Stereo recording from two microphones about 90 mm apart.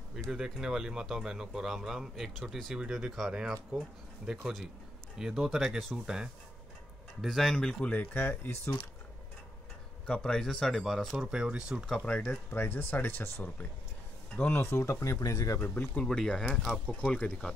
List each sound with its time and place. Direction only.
0.3 s speech: 5° right (ahead or behind); by 8.7 s 25° left (ahead or behind)
10.0 s speech: 10° left (ahead or behind)
11.2 s speech: 10° right (ahead or behind)
12.0 s speech: 15° left (ahead or behind); by 15.6 s 40° left (ahead or behind)
15.6 s speech: 20° left (ahead or behind)
16.0 s speech: 5° left (ahead or behind)
17.0 s speech: 15° left (ahead or behind)